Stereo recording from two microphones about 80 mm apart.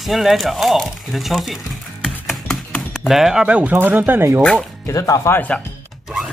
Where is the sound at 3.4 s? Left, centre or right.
Centre.